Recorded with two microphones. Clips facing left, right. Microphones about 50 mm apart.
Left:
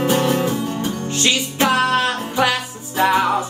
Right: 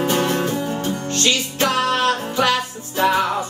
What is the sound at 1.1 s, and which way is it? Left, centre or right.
Music, centre.